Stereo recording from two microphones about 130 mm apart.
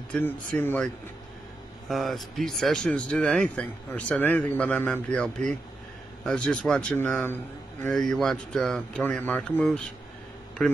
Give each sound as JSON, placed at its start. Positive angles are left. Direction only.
{"t": 0.6, "sound": "speech", "side_deg": 15}
{"t": 1.9, "sound": "speech", "side_deg": 0}